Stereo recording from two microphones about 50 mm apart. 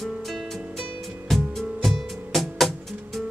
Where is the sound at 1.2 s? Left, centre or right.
Centre.